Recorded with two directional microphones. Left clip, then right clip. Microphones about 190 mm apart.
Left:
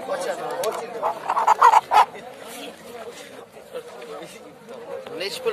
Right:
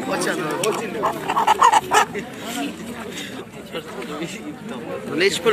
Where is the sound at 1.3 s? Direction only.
35° right (ahead or behind).